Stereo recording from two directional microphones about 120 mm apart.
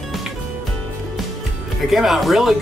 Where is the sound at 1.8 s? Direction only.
Centre (ahead or behind).